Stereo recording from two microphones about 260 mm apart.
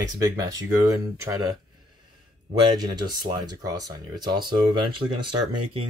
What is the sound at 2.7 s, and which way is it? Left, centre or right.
Speech, centre.